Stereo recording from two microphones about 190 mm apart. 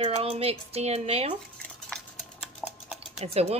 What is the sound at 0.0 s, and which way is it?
Speech, 30° right (ahead or behind).